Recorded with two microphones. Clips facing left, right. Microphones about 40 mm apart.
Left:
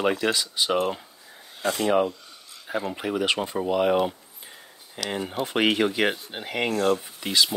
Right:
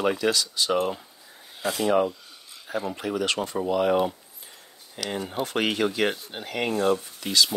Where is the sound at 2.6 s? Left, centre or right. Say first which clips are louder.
Left 1 dB; centre.